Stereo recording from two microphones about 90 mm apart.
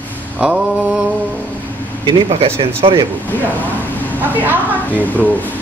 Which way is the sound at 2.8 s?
70° right (ahead or behind).